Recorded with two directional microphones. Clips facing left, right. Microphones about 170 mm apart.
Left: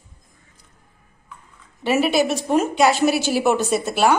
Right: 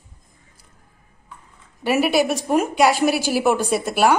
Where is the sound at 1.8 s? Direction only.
10° right (ahead or behind).